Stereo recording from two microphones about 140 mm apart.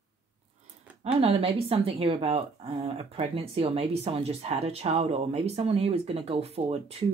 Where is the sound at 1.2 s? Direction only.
40° right (ahead or behind).